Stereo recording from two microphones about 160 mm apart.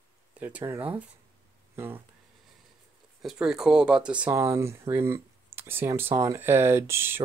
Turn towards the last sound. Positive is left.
turn(degrees=-15)  # may be behind; listen again after turning